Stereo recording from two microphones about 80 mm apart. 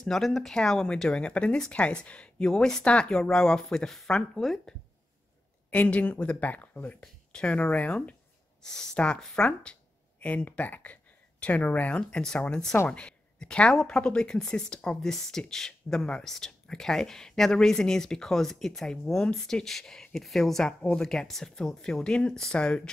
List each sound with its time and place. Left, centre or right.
0.0 s speech: centre
5.7 s speech: centre